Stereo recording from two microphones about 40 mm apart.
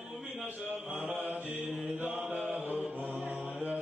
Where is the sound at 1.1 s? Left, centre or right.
Right.